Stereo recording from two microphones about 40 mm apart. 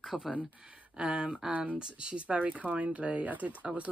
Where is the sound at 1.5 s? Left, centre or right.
Right.